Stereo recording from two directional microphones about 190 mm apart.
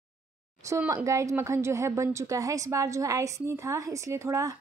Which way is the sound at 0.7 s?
15° right (ahead or behind).